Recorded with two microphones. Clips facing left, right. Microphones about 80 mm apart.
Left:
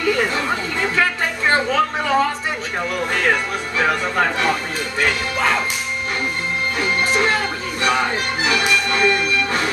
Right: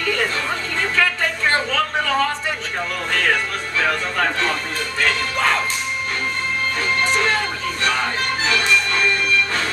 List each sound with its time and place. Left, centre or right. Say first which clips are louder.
0.0 s a sound: left 3 dB; centre
3.1 s speech: even; centre
6.8 s music: left 2 dB; centre